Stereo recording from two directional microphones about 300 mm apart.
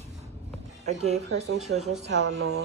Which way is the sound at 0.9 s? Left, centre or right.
Right.